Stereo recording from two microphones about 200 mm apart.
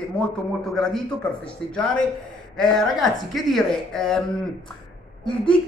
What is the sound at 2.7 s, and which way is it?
Speech, centre (ahead or behind).